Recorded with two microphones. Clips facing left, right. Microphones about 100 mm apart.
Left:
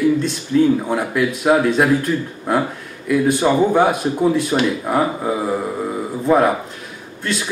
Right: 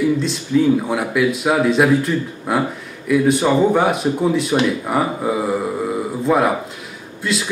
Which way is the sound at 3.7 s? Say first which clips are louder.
Left 1 dB; centre (ahead or behind).